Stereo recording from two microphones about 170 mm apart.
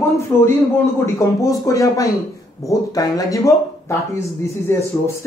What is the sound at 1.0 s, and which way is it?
Speech, 20° left (ahead or behind).